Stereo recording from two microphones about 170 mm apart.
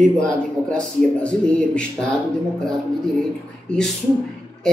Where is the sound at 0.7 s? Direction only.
5° left (ahead or behind).